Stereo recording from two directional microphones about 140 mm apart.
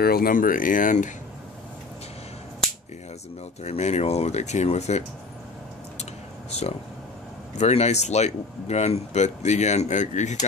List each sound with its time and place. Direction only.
0.0 s speech: 90° left; by 1.1 s 65° left (ahead or behind)
3.6 s speech: 50° left (ahead or behind)
7.5 s speech: 50° left (ahead or behind)